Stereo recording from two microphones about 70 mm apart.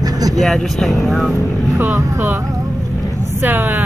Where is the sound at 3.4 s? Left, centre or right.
Right.